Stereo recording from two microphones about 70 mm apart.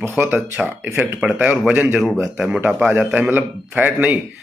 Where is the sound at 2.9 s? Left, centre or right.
Right.